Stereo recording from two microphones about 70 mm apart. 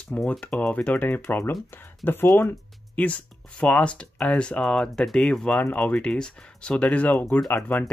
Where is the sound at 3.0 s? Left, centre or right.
Centre.